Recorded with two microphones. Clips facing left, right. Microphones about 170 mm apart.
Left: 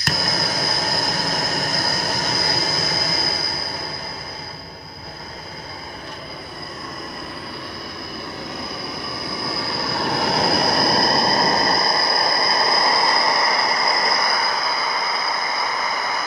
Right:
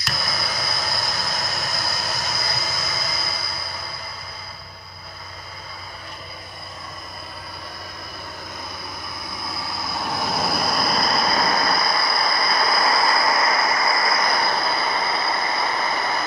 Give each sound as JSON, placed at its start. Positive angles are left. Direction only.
{"t": 0.0, "sound": "a sound", "side_deg": 50}
{"t": 8.5, "sound": "vehicle", "side_deg": 70}
{"t": 11.1, "sound": "train", "side_deg": 30}
{"t": 11.7, "sound": "train", "side_deg": 40}
{"t": 12.6, "sound": "train", "side_deg": 20}